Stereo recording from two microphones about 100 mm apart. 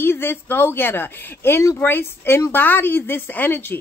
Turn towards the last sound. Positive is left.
turn(degrees=20)  # may be behind; listen again after turning